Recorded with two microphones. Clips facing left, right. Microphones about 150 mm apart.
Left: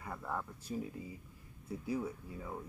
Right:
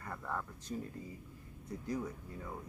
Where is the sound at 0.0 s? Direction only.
10° left (ahead or behind).